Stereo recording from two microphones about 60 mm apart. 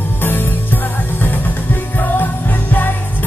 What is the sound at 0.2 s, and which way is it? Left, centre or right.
Music, left.